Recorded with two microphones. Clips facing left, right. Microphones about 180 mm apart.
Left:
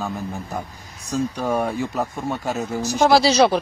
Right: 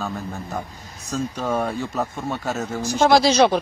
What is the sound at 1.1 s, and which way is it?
Speech, 15° left (ahead or behind).